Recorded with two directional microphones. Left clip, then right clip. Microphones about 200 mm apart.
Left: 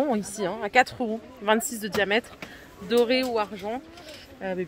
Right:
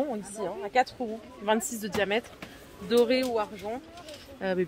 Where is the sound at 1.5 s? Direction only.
5° left (ahead or behind).